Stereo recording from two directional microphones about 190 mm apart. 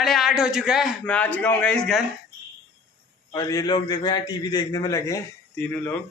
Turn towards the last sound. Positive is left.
turn(degrees=10)  # may be behind; listen again after turning